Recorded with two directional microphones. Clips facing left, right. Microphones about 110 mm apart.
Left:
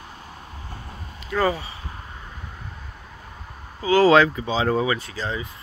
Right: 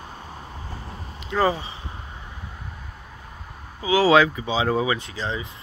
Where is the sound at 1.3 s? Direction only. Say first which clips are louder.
Right 1 dB; 20° right (ahead or behind).